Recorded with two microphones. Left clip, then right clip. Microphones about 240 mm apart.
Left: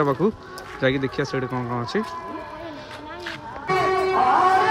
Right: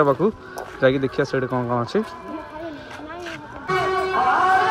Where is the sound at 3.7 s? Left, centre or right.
Left.